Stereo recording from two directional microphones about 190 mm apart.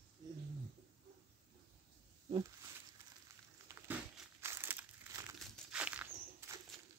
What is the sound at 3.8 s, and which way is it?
Crumpling, 10° right (ahead or behind).